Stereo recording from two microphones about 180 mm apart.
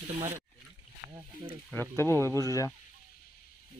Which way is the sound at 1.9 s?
15° left (ahead or behind).